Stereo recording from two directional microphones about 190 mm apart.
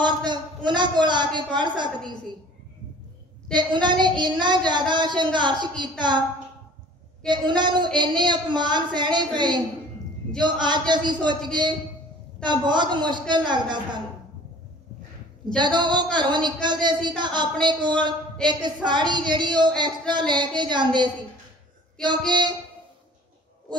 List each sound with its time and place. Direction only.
0.0 s a man's voice: 25° right (ahead or behind)
3.5 s a woman's voice: 25° right (ahead or behind)
7.2 s a woman's voice: 25° right (ahead or behind)
15.5 s a woman's voice: 25° right (ahead or behind)